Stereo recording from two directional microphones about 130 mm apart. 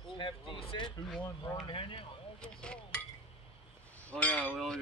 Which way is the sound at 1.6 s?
40° left (ahead or behind).